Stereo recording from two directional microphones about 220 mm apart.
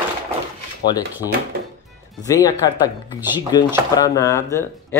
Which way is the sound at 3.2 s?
10° right (ahead or behind).